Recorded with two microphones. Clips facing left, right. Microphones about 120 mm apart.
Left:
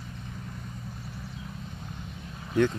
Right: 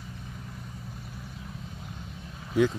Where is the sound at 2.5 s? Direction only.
5° right (ahead or behind).